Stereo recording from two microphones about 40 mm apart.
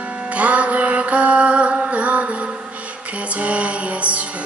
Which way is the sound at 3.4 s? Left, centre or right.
Right.